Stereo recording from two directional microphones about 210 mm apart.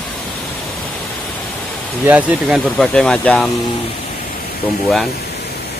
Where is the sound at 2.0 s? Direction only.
5° right (ahead or behind).